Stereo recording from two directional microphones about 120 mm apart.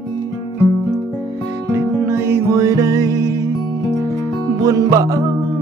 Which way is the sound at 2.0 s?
25° right (ahead or behind).